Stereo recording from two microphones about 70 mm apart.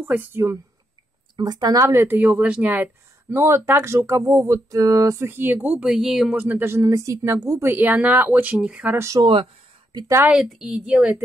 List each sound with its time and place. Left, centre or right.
0.0 s speech: right
1.3 s speech: right
2.1 s speech: right
5.2 s speech: right
5.9 s a woman's voice: centre
6.3 s speech: right
7.6 s a woman's voice: right
9.1 s speech: right
10.5 s a woman's voice: centre